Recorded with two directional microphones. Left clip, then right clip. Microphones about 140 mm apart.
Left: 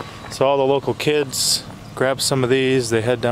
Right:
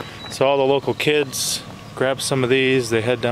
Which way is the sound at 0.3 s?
5° left (ahead or behind).